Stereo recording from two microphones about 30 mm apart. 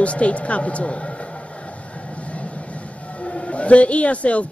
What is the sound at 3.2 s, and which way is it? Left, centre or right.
Speech, left.